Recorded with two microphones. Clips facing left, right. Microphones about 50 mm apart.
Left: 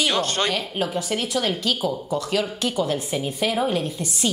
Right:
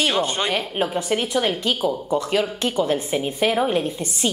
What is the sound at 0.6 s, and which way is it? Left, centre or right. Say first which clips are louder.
A woman's voice: right 2 dB; right.